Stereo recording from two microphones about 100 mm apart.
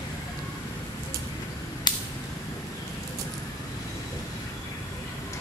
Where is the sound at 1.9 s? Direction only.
45° left (ahead or behind).